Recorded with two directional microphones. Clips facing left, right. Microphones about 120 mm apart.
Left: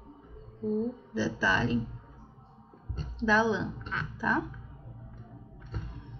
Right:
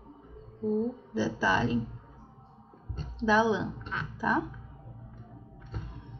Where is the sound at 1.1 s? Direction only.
15° right (ahead or behind).